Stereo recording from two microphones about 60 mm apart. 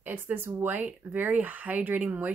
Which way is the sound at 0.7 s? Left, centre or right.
Right.